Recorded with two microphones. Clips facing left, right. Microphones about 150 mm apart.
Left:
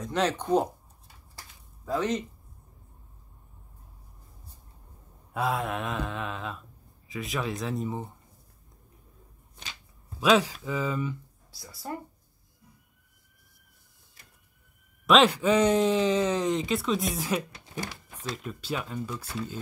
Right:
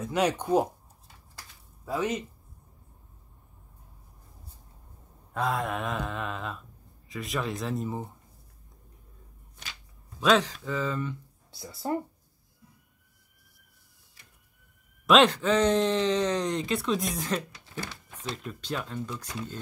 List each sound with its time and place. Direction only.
0.0 s speech: 10° right (ahead or behind)
1.9 s speech: 10° right (ahead or behind)
5.3 s speech: centre (ahead or behind)
10.2 s speech: 10° left (ahead or behind)
11.5 s speech: 25° right (ahead or behind)
15.0 s speech: 5° left (ahead or behind)
17.6 s a sound: 15° left (ahead or behind)
18.3 s speech: 5° left (ahead or behind)